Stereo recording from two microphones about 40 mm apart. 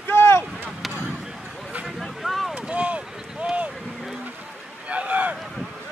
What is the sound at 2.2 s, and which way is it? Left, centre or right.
Boat, centre.